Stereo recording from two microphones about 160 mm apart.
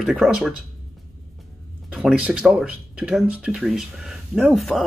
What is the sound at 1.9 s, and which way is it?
Speech, 5° right (ahead or behind).